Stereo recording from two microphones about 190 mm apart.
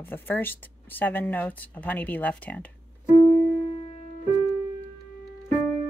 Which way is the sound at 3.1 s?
35° left (ahead or behind).